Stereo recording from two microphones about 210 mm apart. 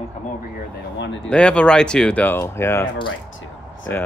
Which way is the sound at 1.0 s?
55° left (ahead or behind).